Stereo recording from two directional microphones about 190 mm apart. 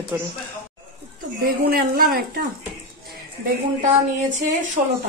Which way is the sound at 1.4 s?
50° right (ahead or behind).